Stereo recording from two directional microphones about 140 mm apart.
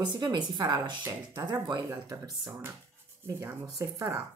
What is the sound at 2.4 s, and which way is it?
Speech, 20° right (ahead or behind).